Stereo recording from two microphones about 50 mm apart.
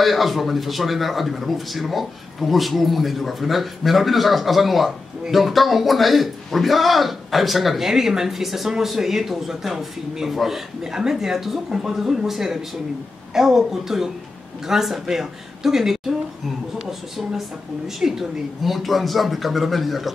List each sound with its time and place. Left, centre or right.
0.0 s a man's voice: centre
17.8 s a man's voice: centre